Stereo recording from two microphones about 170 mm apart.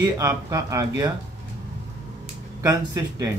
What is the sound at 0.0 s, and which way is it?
Speech, 20° right (ahead or behind).